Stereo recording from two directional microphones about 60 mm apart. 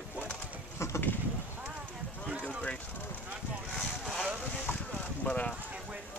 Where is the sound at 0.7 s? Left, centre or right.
Left.